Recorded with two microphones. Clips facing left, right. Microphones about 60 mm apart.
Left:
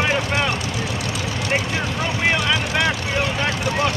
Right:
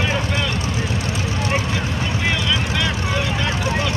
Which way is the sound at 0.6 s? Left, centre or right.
Right.